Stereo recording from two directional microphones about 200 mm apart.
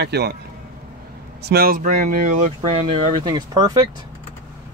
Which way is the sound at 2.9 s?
20° right (ahead or behind).